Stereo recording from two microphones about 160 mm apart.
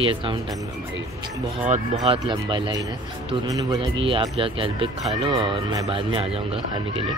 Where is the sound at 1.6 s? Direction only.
45° right (ahead or behind).